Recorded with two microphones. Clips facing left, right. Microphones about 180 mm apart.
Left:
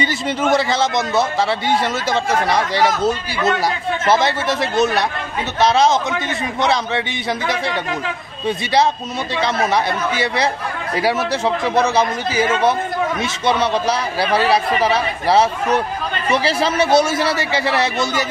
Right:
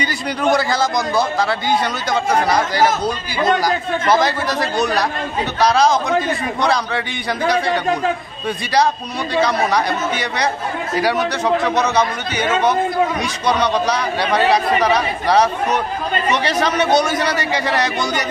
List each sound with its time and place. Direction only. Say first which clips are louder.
0.6 s speech: even; 25° left (ahead or behind)
3.6 s speech: right 1 dB; 25° left (ahead or behind)
9.4 s speech: right 1 dB; 25° left (ahead or behind)
13.6 s speech: even; 30° left (ahead or behind)
16.7 s a man's voice: left 2 dB; 5° left (ahead or behind)
17.0 s speech: left 1 dB; 25° left (ahead or behind)